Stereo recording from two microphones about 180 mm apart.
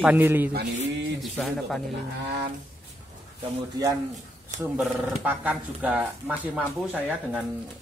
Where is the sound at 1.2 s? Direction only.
5° left (ahead or behind).